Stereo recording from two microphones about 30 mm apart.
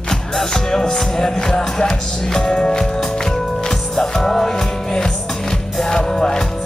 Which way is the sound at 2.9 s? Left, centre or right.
Centre.